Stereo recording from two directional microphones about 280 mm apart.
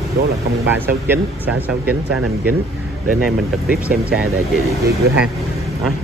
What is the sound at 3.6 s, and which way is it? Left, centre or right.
Speech, right.